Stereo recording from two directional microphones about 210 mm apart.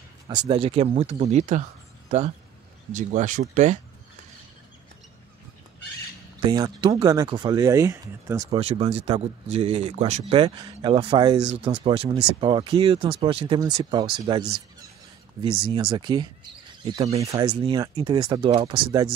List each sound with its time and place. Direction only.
0.3 s speech: 20° right (ahead or behind)
6.4 s speech: 20° right (ahead or behind)
8.5 s speech: 30° right (ahead or behind)
10.4 s speech: 20° right (ahead or behind)
11.4 s speech: 30° right (ahead or behind)
15.6 s speech: 25° right (ahead or behind)